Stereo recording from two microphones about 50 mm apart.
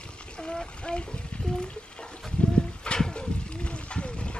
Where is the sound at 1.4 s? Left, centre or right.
Centre.